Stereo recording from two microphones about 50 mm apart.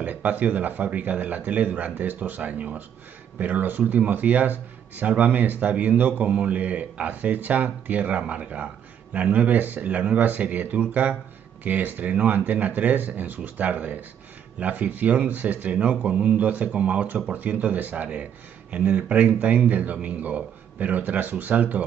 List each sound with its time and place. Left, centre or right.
0.0 s speech: right
6.2 s speech: right